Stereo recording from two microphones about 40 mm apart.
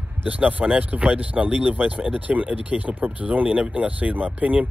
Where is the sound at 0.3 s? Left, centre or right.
Right.